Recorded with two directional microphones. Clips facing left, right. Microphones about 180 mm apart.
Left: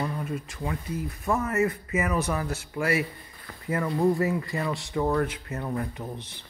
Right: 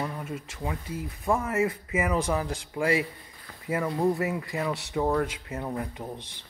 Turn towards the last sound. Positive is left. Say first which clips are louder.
# left 2 dB
turn(degrees=-15)  # may be behind; listen again after turning